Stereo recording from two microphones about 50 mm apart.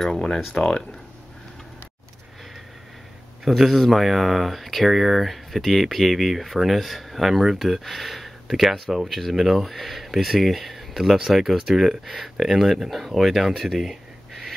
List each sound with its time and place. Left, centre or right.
0.0 s speech: centre
3.4 s speech: centre